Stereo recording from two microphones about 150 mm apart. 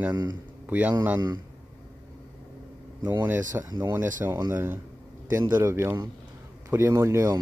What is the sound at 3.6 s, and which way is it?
Speech, 25° right (ahead or behind).